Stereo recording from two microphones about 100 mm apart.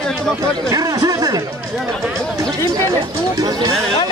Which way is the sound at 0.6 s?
35° right (ahead or behind).